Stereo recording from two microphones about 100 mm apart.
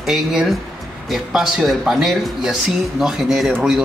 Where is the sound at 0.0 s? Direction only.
5° right (ahead or behind).